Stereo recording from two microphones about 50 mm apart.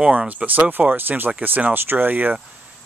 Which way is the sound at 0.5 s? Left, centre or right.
Right.